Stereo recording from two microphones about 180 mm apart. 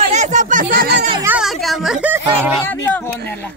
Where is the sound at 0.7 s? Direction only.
55° right (ahead or behind).